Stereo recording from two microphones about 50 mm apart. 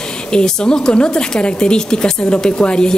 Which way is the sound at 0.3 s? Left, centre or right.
Centre.